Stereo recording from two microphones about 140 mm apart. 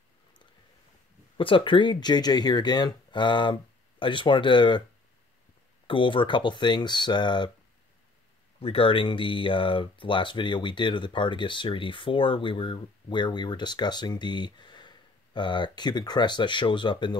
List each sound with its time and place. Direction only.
1.4 s speech: 35° left (ahead or behind)
5.9 s speech: 35° left (ahead or behind)
8.5 s speech: 45° left (ahead or behind)